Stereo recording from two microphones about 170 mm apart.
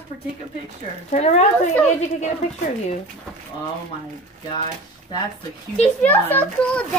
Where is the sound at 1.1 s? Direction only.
40° left (ahead or behind).